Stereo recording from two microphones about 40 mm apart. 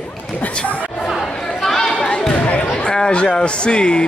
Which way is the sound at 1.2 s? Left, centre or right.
Left.